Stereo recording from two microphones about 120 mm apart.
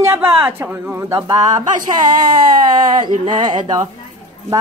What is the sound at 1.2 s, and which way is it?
Speech, 30° right (ahead or behind).